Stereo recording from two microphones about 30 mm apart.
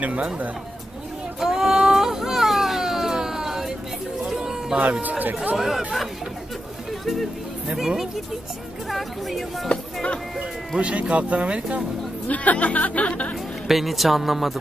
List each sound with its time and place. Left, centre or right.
0.0 s speech: right
1.4 s baby cry: centre
3.2 s a sound: centre
4.7 s speech: right
5.2 s speech: right
5.6 s speech: centre
7.7 s speech: centre
8.9 s speech: centre
10.8 s speech: right
12.3 s speech: left
13.7 s speech: centre